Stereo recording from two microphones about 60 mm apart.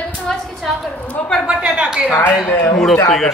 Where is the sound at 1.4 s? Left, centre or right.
Centre.